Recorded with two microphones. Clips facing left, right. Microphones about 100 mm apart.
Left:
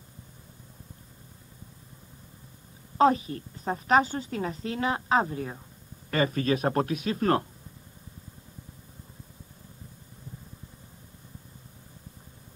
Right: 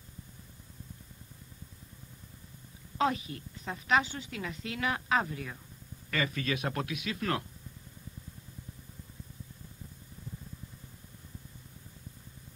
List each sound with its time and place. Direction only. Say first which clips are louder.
3.0 s a woman's voice: left 8 dB; 35° left (ahead or behind)